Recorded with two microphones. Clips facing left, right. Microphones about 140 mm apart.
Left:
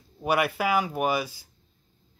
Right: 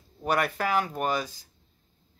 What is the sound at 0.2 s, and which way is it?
Speech, 10° left (ahead or behind).